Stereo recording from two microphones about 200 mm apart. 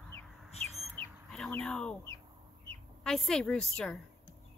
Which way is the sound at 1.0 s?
5° left (ahead or behind).